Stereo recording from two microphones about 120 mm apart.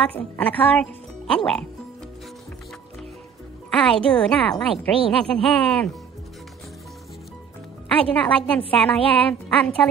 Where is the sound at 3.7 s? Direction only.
5° left (ahead or behind).